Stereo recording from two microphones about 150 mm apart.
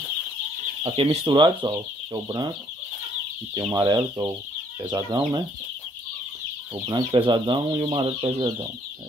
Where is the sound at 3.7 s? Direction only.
25° right (ahead or behind).